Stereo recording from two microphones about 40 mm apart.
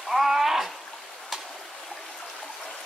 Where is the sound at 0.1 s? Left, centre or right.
Centre.